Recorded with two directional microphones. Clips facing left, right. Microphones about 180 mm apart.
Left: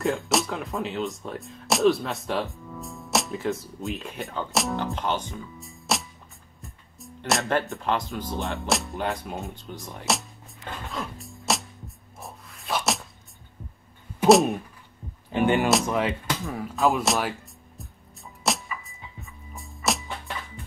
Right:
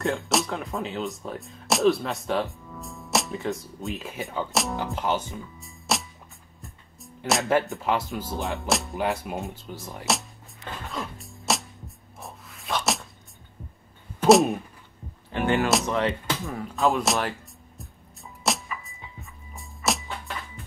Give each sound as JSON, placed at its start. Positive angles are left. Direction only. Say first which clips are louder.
{"t": 0.0, "sound": "speech", "louder": "left 1 dB", "side_deg": 0}
{"t": 10.9, "sound": "music", "louder": "even", "side_deg": 0}
{"t": 12.2, "sound": "a sound", "louder": "even", "side_deg": 0}
{"t": 14.2, "sound": "a sound", "louder": "even", "side_deg": 0}
{"t": 15.3, "sound": "speech", "louder": "left 2 dB", "side_deg": 15}
{"t": 15.7, "sound": "speech", "louder": "even", "side_deg": 5}
{"t": 17.7, "sound": "music", "louder": "even", "side_deg": 0}